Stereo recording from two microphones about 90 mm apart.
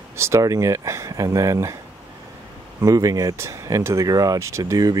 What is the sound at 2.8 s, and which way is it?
Speech, 35° right (ahead or behind).